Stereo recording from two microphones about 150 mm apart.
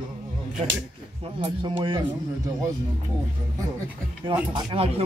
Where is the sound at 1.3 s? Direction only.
35° right (ahead or behind).